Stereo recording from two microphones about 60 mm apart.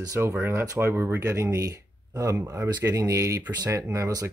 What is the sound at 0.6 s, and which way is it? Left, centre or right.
Speech, right.